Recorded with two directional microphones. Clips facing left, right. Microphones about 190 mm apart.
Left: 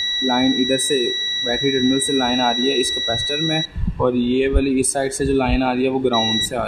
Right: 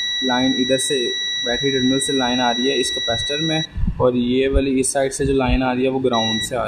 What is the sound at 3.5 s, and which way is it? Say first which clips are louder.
Speech: right 1 dB; centre (ahead or behind).